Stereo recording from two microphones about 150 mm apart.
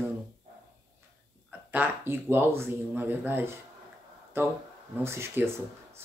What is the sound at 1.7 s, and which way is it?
Speech, 15° right (ahead or behind).